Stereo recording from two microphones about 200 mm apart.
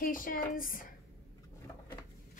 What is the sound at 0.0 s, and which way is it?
Speech, 45° left (ahead or behind).